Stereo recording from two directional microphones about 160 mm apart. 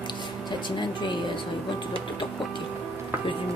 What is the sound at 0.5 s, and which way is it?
Speech, 30° left (ahead or behind).